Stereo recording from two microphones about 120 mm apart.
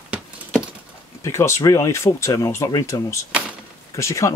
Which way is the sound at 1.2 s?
25° left (ahead or behind).